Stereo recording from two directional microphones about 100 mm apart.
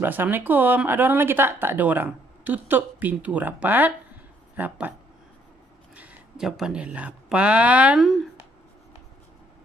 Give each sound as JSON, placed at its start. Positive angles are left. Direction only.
{"t": 0.0, "sound": "speech", "side_deg": -20}
{"t": 5.9, "sound": "speech", "side_deg": -10}